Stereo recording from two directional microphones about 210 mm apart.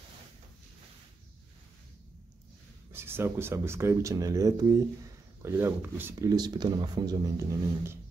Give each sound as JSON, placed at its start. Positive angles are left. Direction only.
{"t": 2.9, "sound": "speech", "side_deg": -10}